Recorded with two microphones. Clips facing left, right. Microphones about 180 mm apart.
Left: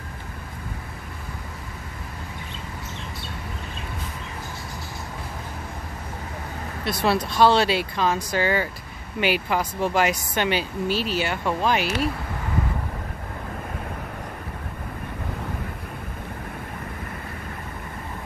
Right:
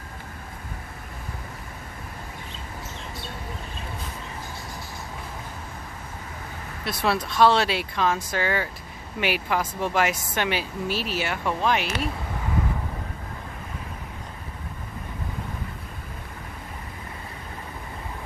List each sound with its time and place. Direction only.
6.8 s speech: centre (ahead or behind)